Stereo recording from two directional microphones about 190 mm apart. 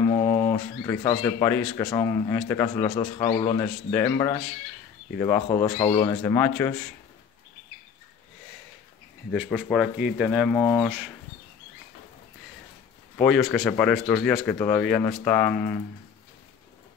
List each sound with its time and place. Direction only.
0.0 s a sound: 15° left (ahead or behind)
1.8 s speech: 15° left (ahead or behind)
9.3 s speech: centre (ahead or behind)
13.2 s speech: 5° left (ahead or behind)